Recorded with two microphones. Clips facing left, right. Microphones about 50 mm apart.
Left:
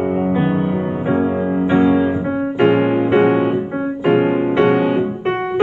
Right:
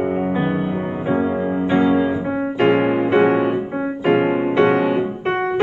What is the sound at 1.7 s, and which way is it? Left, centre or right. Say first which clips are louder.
Music: left 2 dB; left.